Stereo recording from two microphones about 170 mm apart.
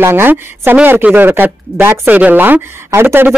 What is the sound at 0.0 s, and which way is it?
Speech, 10° right (ahead or behind).